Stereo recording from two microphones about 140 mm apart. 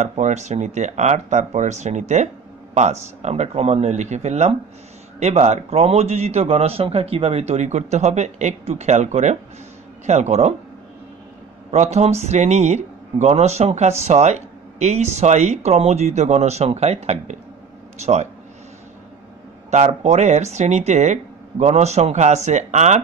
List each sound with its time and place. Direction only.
0.0 s speech: 55° right (ahead or behind)
11.7 s speech: 55° right (ahead or behind)
19.7 s speech: 55° right (ahead or behind)